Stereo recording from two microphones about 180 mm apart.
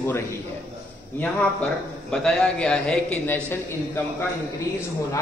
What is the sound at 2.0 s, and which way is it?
A man's voice, 5° left (ahead or behind).